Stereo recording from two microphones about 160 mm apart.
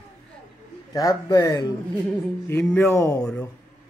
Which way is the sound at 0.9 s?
20° left (ahead or behind).